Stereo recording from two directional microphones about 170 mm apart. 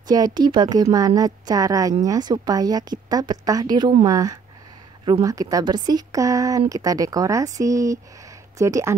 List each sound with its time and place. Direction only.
0.0 s a woman's voice: 25° right (ahead or behind)